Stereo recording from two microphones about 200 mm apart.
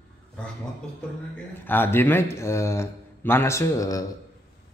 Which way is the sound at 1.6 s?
10° left (ahead or behind).